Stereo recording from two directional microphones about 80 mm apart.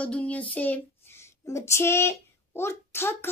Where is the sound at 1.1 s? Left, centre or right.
Left.